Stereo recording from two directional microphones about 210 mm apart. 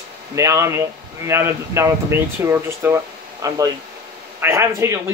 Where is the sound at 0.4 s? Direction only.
15° right (ahead or behind).